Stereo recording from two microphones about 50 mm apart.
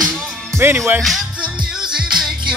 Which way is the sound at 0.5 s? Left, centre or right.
Right.